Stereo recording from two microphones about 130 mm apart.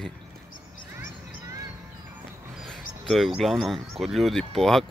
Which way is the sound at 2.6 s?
Centre (ahead or behind).